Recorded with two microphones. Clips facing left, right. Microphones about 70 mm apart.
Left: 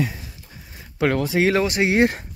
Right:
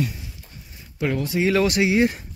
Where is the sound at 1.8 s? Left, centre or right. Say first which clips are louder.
Left 1 dB; left.